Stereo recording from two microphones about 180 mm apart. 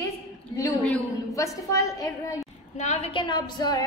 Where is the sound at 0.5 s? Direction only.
15° left (ahead or behind).